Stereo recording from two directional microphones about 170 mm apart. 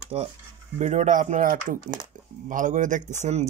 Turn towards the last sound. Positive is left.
turn(degrees=-45)  # may be behind; listen again after turning